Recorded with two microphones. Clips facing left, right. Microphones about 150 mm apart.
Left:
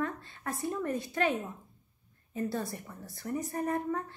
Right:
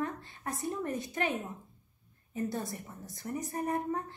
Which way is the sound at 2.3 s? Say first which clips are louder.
Left 1 dB; 20° right (ahead or behind).